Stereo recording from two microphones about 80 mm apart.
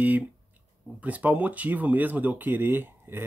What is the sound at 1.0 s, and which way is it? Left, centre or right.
Speech, centre.